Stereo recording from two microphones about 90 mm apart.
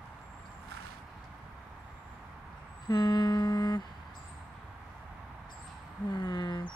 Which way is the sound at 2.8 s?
50° left (ahead or behind).